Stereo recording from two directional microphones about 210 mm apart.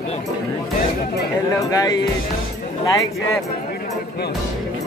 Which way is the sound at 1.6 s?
15° left (ahead or behind).